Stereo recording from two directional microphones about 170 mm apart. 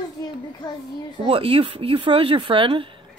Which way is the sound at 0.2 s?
25° left (ahead or behind).